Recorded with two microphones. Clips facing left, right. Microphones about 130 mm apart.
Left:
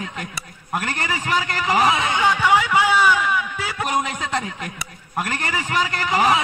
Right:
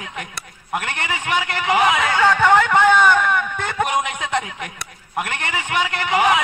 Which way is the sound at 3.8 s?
40° left (ahead or behind).